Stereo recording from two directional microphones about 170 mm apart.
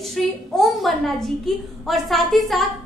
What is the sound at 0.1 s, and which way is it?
A woman's voice, centre (ahead or behind).